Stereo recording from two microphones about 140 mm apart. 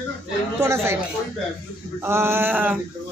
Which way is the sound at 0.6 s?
20° right (ahead or behind).